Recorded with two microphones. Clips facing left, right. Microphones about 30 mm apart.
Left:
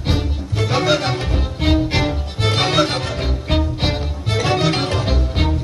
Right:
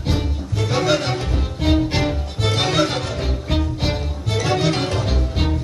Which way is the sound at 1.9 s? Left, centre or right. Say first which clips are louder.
Left 1 dB; centre.